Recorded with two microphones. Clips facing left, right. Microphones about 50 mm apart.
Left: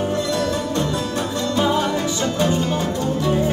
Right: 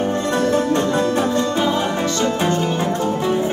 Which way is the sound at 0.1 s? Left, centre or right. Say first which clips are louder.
Right 3 dB; right.